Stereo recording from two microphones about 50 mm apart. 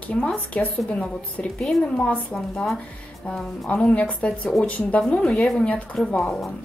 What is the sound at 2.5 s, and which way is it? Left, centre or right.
A woman's voice, centre.